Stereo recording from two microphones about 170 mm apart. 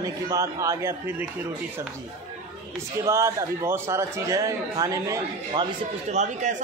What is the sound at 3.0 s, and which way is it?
A man's voice, 15° right (ahead or behind).